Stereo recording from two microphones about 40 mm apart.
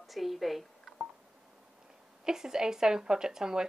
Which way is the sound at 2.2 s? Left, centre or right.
Centre.